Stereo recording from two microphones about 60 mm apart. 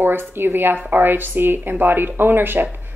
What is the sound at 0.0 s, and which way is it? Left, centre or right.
A woman's voice, right.